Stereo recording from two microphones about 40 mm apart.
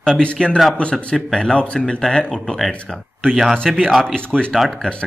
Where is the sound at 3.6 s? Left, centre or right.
Centre.